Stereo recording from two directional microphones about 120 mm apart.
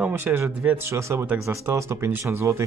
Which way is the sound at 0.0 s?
20° right (ahead or behind).